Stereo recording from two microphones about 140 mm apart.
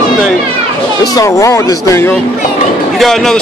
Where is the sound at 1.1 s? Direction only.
20° left (ahead or behind).